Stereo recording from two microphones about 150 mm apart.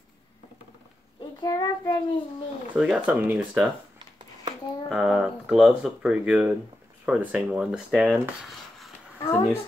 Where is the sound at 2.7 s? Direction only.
5° right (ahead or behind).